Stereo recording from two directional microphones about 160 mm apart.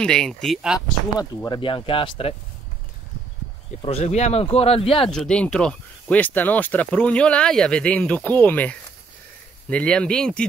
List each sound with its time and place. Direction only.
0.0 s speech: 5° left (ahead or behind)
1.4 s speech: 30° left (ahead or behind)
3.8 s speech: 40° left (ahead or behind)
5.1 s speech: 5° left (ahead or behind)